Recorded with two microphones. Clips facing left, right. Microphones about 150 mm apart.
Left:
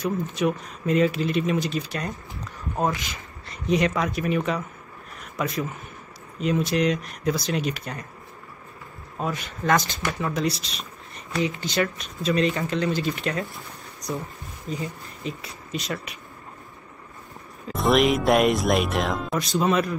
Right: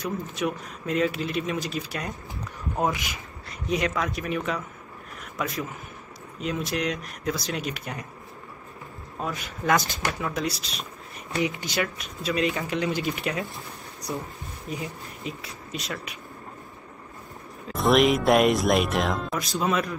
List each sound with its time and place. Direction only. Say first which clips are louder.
0.3 s speech: left 4 dB; centre (ahead or behind)
3.4 s speech: left 4 dB; centre (ahead or behind)
9.2 s speech: left 3 dB; centre (ahead or behind)
11.3 s speech: left 1 dB; 15° right (ahead or behind)
11.7 s speech: left 3 dB; 5° right (ahead or behind)
14.7 s speech: left 3 dB; 10° right (ahead or behind)
17.6 s speech: even; centre (ahead or behind)